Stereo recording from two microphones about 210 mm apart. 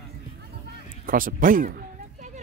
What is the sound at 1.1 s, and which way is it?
Speech, 40° right (ahead or behind).